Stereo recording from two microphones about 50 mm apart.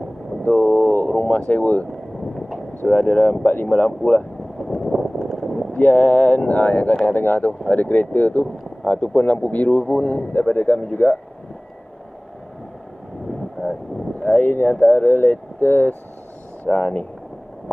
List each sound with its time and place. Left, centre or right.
0.4 s vehicle: left
1.5 s speech: left
3.0 s speech: left
4.9 s a sound: centre
5.7 s speech: left
14.2 s speech: left